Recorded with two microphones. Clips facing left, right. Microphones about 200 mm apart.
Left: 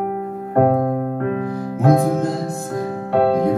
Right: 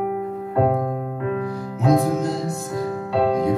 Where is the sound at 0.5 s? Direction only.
55° left (ahead or behind).